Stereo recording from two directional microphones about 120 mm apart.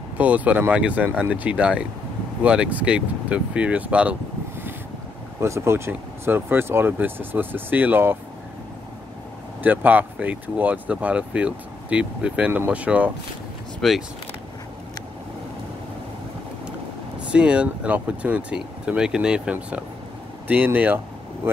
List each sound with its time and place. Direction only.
0.2 s speech: 10° right (ahead or behind)
5.4 s speech: 20° right (ahead or behind)
9.6 s speech: 15° right (ahead or behind)
13.7 s speech: centre (ahead or behind)
17.3 s speech: 10° right (ahead or behind)